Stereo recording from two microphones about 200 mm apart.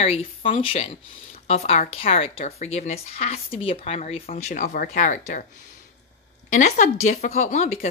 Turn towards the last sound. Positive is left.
turn(degrees=35)  # may be behind; listen again after turning